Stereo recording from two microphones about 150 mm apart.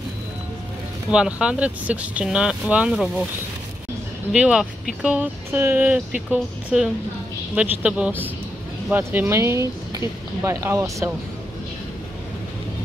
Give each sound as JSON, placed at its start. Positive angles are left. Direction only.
{"t": 1.1, "sound": "speech", "side_deg": -5}
{"t": 4.3, "sound": "speech", "side_deg": -5}